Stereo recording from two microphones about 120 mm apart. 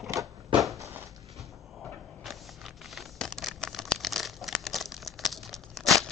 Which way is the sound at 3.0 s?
5° left (ahead or behind).